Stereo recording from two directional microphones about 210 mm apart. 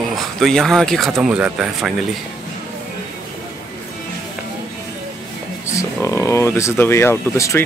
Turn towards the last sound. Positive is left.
turn(degrees=10)  # may be behind; listen again after turning